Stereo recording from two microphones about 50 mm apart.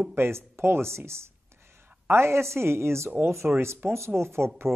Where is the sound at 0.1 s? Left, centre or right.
Right.